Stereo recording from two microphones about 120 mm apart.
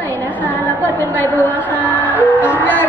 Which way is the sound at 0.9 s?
15° left (ahead or behind).